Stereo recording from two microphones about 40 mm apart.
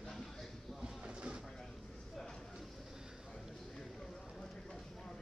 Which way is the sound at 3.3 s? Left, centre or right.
Centre.